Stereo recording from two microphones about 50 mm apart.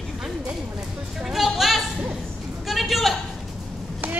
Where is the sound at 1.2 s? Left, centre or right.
Centre.